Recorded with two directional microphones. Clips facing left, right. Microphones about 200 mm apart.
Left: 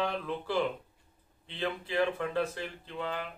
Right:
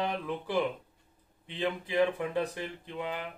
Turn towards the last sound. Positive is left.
turn(degrees=-15)  # may be behind; listen again after turning